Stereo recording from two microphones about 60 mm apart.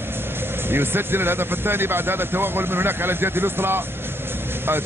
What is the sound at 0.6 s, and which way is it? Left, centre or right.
Speech, right.